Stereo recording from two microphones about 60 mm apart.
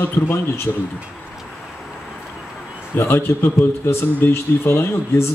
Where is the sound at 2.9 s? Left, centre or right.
Left.